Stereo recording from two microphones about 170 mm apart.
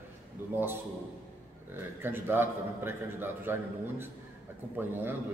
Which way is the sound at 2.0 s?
15° right (ahead or behind).